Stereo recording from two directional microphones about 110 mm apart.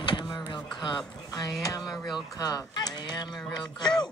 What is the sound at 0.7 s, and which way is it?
Speech, 40° left (ahead or behind).